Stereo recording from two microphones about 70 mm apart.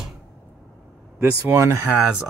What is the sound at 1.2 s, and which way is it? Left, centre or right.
Speech, right.